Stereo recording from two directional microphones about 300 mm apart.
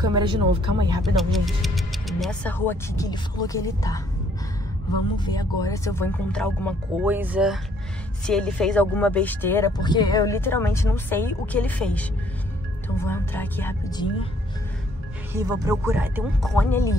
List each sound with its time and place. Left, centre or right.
0.0 s speech: centre
1.0 s speech: centre
5.1 s speech: centre
15.3 s speech: centre